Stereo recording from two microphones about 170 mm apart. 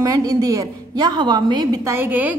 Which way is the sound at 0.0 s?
20° right (ahead or behind).